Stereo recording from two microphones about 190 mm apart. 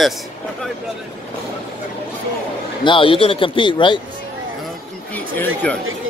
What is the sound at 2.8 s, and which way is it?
Speech, 25° left (ahead or behind).